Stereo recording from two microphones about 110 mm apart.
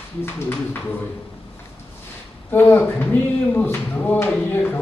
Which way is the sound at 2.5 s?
20° left (ahead or behind).